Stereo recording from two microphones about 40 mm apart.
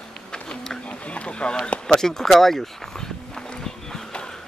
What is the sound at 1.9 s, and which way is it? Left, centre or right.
Speech, centre.